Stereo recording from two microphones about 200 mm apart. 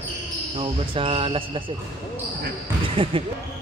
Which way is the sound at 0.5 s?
25° right (ahead or behind).